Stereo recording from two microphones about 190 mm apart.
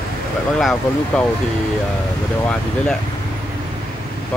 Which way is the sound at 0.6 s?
Centre (ahead or behind).